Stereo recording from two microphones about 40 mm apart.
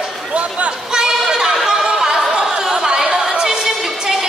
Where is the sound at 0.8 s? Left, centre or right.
Centre.